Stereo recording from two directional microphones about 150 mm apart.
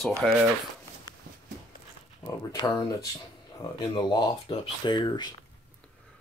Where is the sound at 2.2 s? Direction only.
25° left (ahead or behind).